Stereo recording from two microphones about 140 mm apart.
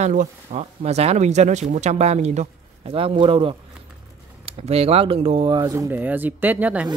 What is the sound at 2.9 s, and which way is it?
Speech, 45° right (ahead or behind).